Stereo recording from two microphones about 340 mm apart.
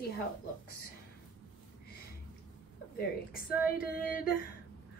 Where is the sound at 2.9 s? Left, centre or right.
Left.